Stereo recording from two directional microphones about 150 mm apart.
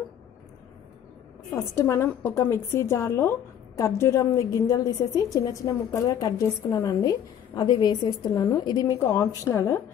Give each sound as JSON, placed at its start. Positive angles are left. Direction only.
{"t": 1.5, "sound": "a woman's voice", "side_deg": 15}